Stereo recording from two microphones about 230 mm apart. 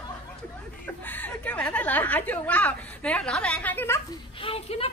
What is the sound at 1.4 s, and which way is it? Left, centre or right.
A woman's voice, centre.